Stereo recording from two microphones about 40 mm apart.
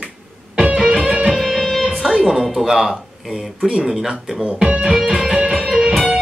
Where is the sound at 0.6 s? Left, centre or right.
Right.